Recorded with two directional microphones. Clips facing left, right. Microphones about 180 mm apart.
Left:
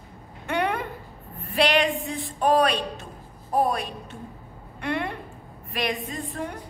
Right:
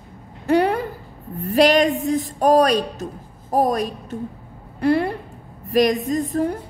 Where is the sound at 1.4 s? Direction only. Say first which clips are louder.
Right 7 dB; 40° right (ahead or behind).